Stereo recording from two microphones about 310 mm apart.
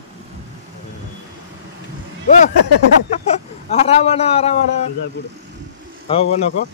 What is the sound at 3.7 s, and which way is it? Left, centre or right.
Speech, left.